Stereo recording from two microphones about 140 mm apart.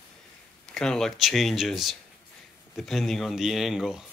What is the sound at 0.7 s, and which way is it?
A man's voice, 5° left (ahead or behind).